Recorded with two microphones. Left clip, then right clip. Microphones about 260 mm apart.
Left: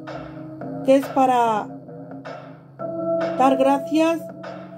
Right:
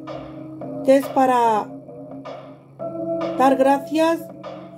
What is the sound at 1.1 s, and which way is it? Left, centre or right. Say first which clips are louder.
Speech: right 1 dB; centre.